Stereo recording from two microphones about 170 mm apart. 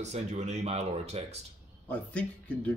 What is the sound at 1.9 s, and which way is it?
Speech, 10° left (ahead or behind).